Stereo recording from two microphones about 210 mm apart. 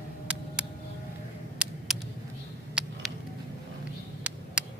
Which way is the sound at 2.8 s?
5° right (ahead or behind).